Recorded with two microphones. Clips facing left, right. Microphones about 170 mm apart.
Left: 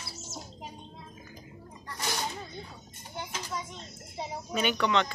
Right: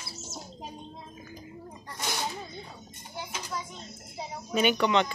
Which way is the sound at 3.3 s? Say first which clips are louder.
Right 1 dB; 10° right (ahead or behind).